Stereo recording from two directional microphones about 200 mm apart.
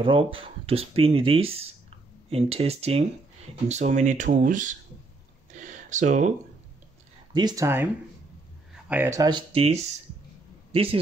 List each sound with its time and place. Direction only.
0.0 s speech: 25° right (ahead or behind)
5.5 s a sound: 40° right (ahead or behind)
7.3 s speech: 20° right (ahead or behind)